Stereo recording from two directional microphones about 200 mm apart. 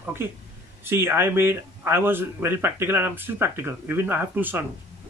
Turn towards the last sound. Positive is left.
turn(degrees=-10)  # may be behind; listen again after turning